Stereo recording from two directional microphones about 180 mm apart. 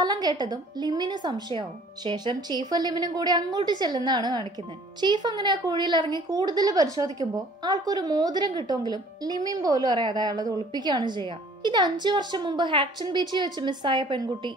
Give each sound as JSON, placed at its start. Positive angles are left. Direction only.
{"t": 0.0, "sound": "a woman's voice", "side_deg": -20}